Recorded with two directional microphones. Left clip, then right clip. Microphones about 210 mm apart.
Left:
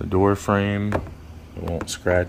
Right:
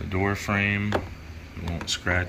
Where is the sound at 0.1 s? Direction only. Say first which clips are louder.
Left 7 dB; 35° left (ahead or behind).